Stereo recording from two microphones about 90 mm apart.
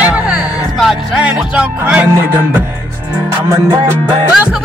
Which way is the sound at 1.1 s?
10° right (ahead or behind).